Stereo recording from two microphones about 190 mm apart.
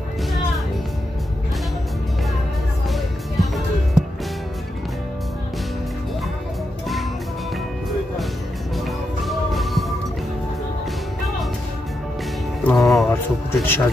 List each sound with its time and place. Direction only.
2.9 s music: centre (ahead or behind)
8.8 s music: centre (ahead or behind)
12.6 s music: centre (ahead or behind)
13.1 s music: 15° left (ahead or behind)